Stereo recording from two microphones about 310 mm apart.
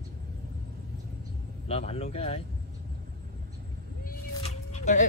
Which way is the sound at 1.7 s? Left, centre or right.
Centre.